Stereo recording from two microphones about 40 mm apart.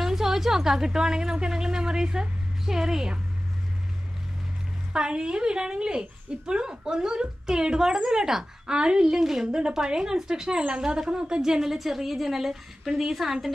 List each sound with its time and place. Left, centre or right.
0.0 s a woman's voice: centre
4.9 s a woman's voice: right; by 13.5 s centre